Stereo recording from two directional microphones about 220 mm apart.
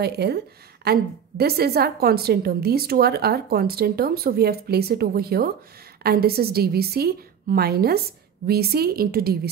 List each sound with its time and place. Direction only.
0.0 s a woman's voice: 45° right (ahead or behind)